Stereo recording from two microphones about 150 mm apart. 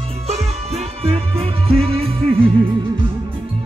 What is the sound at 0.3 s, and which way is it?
Music, 45° right (ahead or behind).